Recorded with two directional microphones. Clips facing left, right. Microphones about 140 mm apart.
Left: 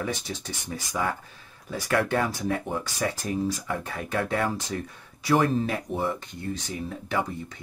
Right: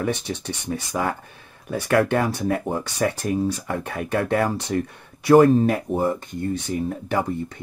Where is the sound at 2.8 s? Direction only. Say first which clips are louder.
Right 6 dB; 65° right (ahead or behind).